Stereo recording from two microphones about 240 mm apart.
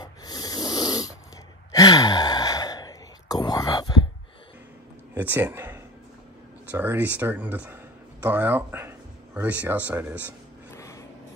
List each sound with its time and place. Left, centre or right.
0.0 s snoring: centre
1.7 s sigh: centre
5.1 s speech: centre
10.8 s a sound: centre